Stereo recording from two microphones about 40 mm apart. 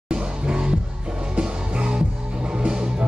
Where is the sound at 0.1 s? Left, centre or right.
Right.